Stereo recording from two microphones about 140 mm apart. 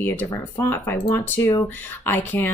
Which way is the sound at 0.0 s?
15° left (ahead or behind).